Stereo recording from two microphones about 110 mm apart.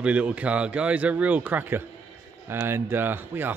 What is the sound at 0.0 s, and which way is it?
Speech, 10° right (ahead or behind).